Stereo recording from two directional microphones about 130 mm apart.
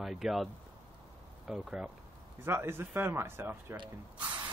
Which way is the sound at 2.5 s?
20° right (ahead or behind).